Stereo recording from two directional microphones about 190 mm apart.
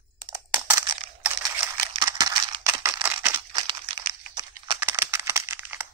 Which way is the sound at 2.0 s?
20° right (ahead or behind).